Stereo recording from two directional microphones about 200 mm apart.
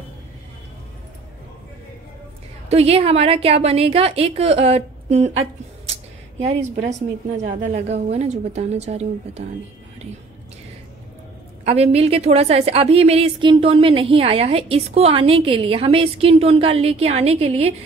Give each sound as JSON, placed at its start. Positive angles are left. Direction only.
{"t": 2.7, "sound": "a woman's voice", "side_deg": -30}
{"t": 11.6, "sound": "a woman's voice", "side_deg": -30}